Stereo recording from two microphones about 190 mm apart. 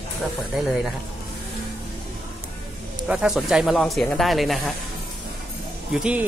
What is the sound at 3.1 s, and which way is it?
Speech, 5° right (ahead or behind).